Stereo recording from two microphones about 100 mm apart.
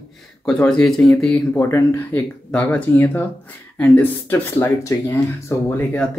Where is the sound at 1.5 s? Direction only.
25° left (ahead or behind).